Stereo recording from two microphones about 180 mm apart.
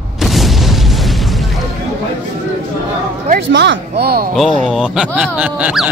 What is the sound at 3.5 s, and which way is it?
Speech, 85° right.